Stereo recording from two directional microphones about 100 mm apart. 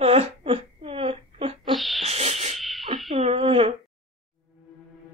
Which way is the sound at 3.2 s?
80° right.